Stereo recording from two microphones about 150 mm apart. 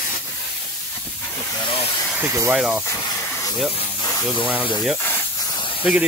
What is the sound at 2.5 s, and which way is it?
Speech, 5° right (ahead or behind).